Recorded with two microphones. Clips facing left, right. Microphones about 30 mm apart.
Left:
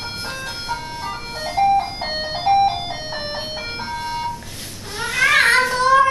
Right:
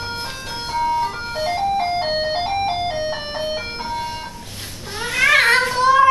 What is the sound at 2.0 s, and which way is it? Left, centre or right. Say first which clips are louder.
Music: right 4 dB; centre.